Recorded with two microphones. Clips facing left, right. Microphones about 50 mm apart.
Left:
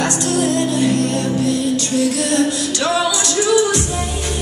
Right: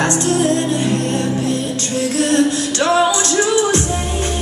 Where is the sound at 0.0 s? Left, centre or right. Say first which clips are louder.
Right 2 dB; right.